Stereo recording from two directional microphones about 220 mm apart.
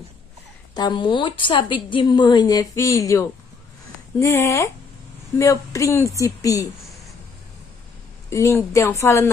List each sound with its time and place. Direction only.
0.7 s a woman's voice: 20° left (ahead or behind)
8.3 s speech: 15° left (ahead or behind)